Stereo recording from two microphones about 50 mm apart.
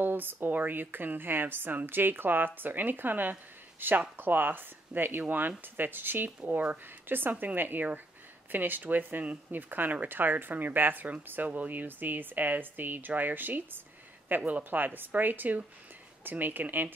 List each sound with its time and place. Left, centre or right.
0.0 s speech: right
6.4 s speech: right